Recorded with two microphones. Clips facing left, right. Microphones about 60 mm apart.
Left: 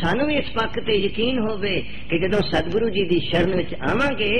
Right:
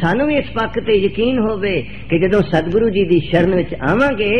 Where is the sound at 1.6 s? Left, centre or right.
Right.